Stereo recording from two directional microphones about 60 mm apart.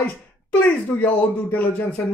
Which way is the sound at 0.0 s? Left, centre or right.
Left.